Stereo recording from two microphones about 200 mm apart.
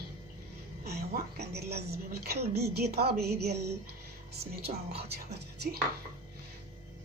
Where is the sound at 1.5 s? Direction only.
55° right (ahead or behind).